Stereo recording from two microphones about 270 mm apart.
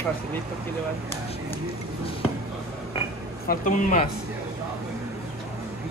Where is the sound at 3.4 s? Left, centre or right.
Left.